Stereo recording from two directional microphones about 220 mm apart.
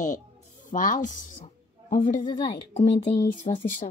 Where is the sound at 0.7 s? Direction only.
35° left (ahead or behind).